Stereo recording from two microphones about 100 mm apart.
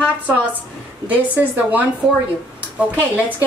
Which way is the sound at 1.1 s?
15° right (ahead or behind).